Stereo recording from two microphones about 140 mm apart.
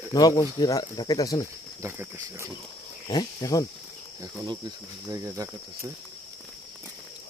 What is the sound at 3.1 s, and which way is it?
Speech, 30° left (ahead or behind).